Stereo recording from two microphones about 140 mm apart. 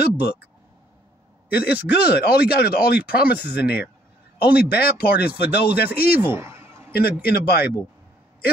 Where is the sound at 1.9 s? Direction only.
90° left.